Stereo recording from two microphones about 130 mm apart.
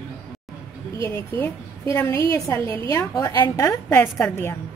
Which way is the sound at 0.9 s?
15° left (ahead or behind).